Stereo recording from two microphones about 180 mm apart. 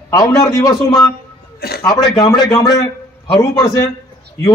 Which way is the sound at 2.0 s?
20° left (ahead or behind).